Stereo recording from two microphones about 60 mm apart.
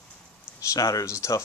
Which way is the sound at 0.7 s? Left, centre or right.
Left.